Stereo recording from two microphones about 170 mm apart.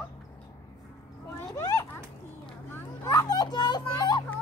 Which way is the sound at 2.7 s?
20° left (ahead or behind).